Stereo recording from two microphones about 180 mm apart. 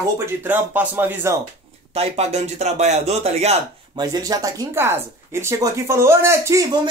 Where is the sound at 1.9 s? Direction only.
35° right (ahead or behind).